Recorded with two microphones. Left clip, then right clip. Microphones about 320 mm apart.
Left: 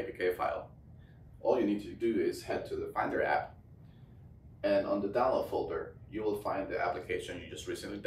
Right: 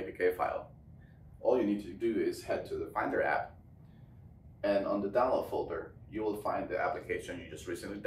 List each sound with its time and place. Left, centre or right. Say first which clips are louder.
0.2 s a man's voice: right 2 dB; centre
1.4 s a man's voice: even; centre
4.6 s a man's voice: left 1 dB; centre